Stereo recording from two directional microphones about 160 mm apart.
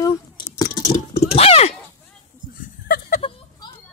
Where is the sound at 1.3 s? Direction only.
40° left (ahead or behind).